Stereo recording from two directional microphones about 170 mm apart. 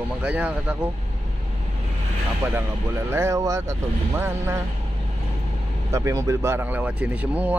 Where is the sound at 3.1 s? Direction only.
15° right (ahead or behind).